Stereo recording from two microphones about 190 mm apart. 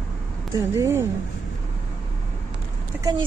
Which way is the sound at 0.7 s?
15° right (ahead or behind).